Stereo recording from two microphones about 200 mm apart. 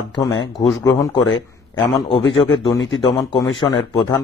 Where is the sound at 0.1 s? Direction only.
20° left (ahead or behind).